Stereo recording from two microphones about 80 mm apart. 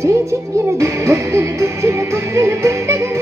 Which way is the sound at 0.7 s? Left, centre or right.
Right.